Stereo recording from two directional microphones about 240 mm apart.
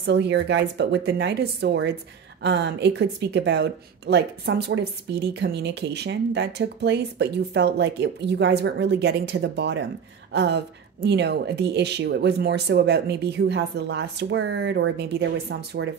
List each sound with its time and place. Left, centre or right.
0.0 s a woman's voice: right